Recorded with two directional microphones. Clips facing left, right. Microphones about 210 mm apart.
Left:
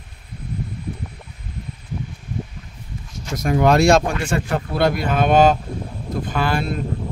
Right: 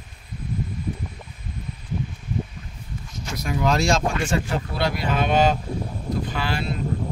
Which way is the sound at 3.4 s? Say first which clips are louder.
Left 7 dB; 55° left (ahead or behind).